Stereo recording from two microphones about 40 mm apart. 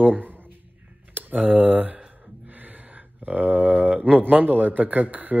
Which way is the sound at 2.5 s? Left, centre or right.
Right.